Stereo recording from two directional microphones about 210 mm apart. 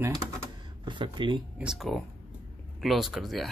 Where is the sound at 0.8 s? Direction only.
20° right (ahead or behind).